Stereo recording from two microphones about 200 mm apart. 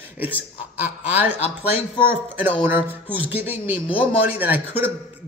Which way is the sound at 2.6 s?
10° right (ahead or behind).